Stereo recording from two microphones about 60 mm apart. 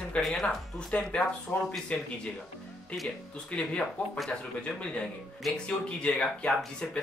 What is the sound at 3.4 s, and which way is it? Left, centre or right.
Speech, centre.